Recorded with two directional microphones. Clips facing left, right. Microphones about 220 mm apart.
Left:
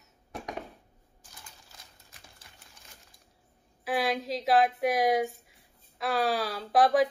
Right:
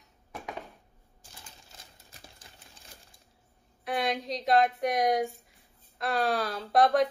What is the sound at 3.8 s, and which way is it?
Speech, 5° left (ahead or behind).